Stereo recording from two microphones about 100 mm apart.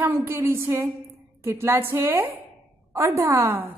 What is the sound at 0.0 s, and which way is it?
A woman's voice, 20° right (ahead or behind).